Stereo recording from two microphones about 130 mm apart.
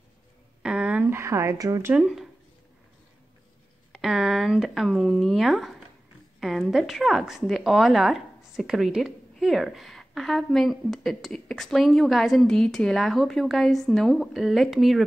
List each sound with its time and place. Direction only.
0.6 s a sound: 5° right (ahead or behind); by 2.0 s 25° right (ahead or behind)
2.0 s a woman's voice: 5° right (ahead or behind)
3.9 s a woman's voice: centre (ahead or behind)